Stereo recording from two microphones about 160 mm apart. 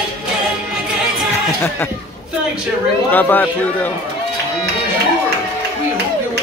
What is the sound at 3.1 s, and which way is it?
Speech, 10° left (ahead or behind).